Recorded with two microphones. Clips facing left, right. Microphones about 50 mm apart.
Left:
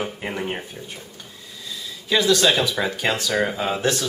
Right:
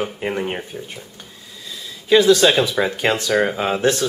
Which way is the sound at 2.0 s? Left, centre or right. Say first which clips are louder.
Right 5 dB; centre.